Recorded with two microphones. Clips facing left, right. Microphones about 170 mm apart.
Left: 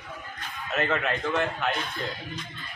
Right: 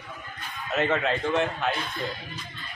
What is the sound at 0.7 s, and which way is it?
Speech, 20° right (ahead or behind).